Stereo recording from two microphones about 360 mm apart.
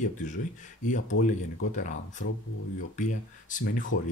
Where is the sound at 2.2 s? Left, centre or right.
Left.